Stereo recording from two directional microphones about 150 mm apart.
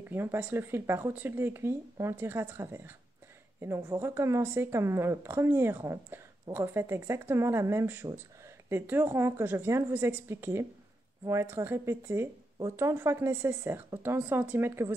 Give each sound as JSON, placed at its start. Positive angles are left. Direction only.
{"t": 0.1, "sound": "speech", "side_deg": -15}